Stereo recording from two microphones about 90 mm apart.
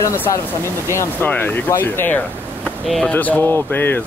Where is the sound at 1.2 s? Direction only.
20° left (ahead or behind).